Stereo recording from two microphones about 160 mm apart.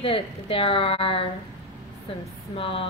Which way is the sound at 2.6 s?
35° left (ahead or behind).